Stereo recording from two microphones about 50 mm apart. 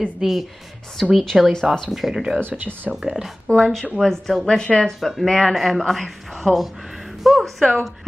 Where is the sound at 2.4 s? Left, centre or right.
Right.